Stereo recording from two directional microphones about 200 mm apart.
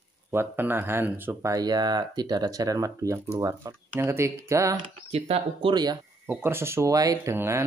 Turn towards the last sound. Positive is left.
turn(degrees=-15)  # may be behind; listen again after turning